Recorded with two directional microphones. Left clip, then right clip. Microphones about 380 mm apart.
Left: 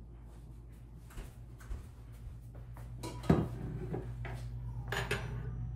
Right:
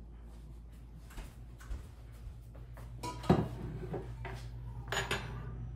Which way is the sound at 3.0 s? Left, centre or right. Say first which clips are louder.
Right 2 dB; centre.